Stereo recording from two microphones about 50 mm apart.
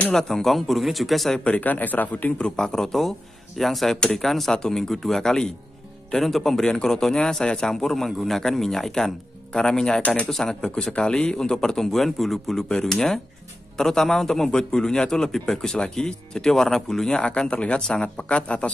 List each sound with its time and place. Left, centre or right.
0.1 s a man's voice: centre
1.4 s a man's voice: left
2.3 s a man's voice: centre
17.2 s speech: left